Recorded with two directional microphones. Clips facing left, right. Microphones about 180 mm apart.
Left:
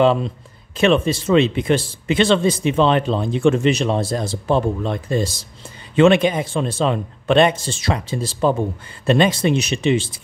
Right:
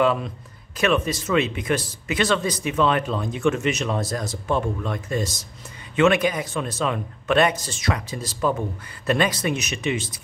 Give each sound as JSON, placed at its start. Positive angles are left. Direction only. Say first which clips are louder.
{"t": 0.0, "sound": "a man's voice", "louder": "left 5 dB", "side_deg": 25}